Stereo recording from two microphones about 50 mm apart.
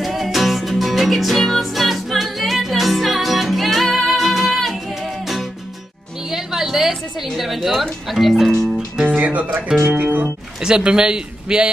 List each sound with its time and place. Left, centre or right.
0.0 s music: centre
6.3 s a sound: centre
7.2 s speech: centre
9.0 s speech: right
10.6 s speech: centre